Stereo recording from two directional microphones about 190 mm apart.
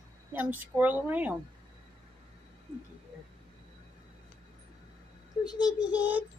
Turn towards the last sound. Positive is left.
turn(degrees=-10)  # may be behind; listen again after turning